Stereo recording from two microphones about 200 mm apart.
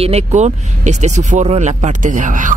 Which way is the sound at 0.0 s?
30° right (ahead or behind).